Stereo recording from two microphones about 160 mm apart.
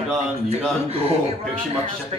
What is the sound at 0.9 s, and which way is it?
Speech, 40° right (ahead or behind).